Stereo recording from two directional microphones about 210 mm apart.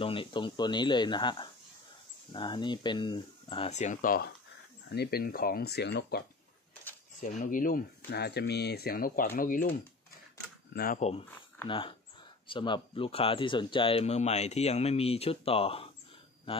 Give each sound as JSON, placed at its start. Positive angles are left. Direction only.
{"t": 0.0, "sound": "speech", "side_deg": 25}
{"t": 6.7, "sound": "a sound", "side_deg": 10}
{"t": 7.2, "sound": "speech", "side_deg": 35}
{"t": 10.7, "sound": "speech", "side_deg": 45}
{"t": 11.2, "sound": "speech", "side_deg": 20}